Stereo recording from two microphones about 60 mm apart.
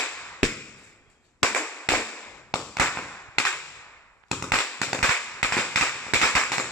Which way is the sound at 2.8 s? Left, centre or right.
Left.